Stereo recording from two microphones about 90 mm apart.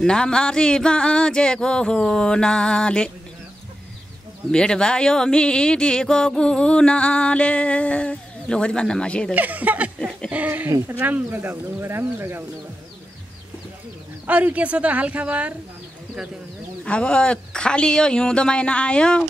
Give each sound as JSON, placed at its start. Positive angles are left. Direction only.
{"t": 0.0, "sound": "speech", "side_deg": 10}
{"t": 4.5, "sound": "speech", "side_deg": 10}
{"t": 9.3, "sound": "speech", "side_deg": -15}
{"t": 14.2, "sound": "speech", "side_deg": -15}
{"t": 16.8, "sound": "speech", "side_deg": 10}